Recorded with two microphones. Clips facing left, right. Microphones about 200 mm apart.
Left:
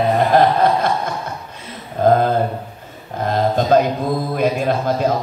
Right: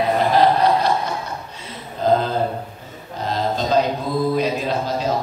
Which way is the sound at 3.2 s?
55° left (ahead or behind).